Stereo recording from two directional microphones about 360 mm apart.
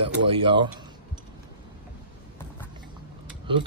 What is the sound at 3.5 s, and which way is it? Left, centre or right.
Speech, centre.